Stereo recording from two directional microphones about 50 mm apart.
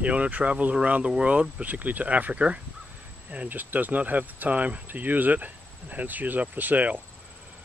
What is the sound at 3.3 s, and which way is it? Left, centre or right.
Speech, right.